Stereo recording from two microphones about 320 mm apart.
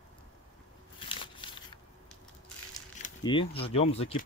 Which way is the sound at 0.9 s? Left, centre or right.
Centre.